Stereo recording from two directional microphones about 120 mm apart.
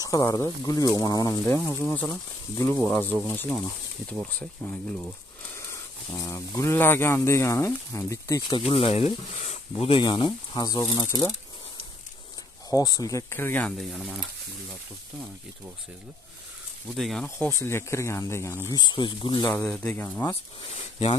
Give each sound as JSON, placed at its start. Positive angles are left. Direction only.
{"t": 0.0, "sound": "speech", "side_deg": 30}
{"t": 1.7, "sound": "speech", "side_deg": 15}
{"t": 5.7, "sound": "speech", "side_deg": 25}
{"t": 8.5, "sound": "speech", "side_deg": 50}
{"t": 12.6, "sound": "speech", "side_deg": 30}
{"t": 13.8, "sound": "speech", "side_deg": -5}
{"t": 16.9, "sound": "speech", "side_deg": 0}
{"t": 17.4, "sound": "speech", "side_deg": 20}
{"t": 18.7, "sound": "speech", "side_deg": 40}
{"t": 19.5, "sound": "speech", "side_deg": 10}
{"t": 20.7, "sound": "speech", "side_deg": 55}